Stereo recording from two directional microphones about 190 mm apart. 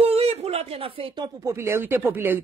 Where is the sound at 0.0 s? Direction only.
30° right (ahead or behind).